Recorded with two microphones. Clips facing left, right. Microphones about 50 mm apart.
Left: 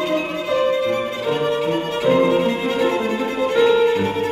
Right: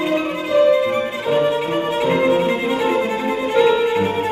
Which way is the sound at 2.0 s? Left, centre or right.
Centre.